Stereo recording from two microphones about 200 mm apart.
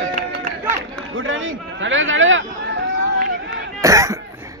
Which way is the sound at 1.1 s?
80° right.